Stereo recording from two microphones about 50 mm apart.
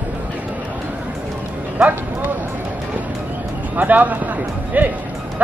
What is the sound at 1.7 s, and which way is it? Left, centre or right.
Speech, right.